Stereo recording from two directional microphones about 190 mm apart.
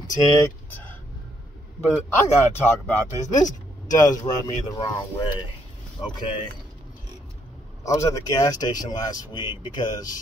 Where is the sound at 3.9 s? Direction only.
20° left (ahead or behind).